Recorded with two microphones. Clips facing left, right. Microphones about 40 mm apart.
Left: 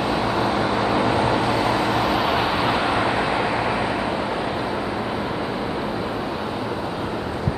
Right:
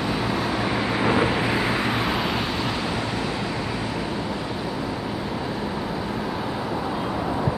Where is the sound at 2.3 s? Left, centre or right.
Centre.